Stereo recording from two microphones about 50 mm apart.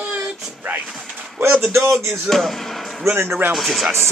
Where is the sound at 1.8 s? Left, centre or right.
Right.